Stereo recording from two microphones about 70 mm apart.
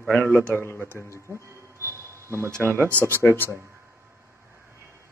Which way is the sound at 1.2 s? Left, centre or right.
Right.